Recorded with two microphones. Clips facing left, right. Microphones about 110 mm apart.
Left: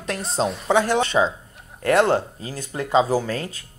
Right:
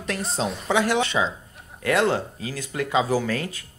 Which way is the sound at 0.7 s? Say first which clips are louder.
Left 3 dB; 40° left (ahead or behind).